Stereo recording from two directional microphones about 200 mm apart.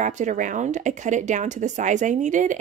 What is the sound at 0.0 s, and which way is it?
Speech, 35° right (ahead or behind).